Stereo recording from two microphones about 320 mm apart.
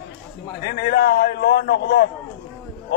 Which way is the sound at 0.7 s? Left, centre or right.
Left.